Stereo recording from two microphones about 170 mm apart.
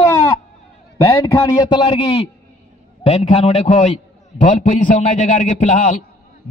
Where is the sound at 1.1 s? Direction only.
15° left (ahead or behind).